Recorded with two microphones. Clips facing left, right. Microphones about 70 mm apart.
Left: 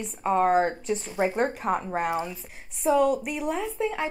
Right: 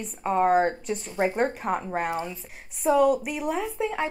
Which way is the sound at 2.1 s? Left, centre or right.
Centre.